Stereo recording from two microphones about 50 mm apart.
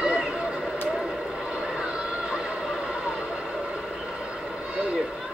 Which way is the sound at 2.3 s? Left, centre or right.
Centre.